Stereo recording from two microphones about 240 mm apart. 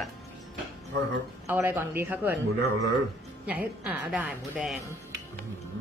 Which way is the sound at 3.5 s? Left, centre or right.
Centre.